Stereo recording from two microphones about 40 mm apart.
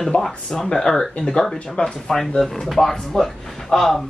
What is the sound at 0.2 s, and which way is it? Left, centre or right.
Speech, centre.